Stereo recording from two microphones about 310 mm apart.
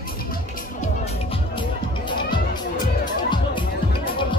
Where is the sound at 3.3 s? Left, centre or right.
Centre.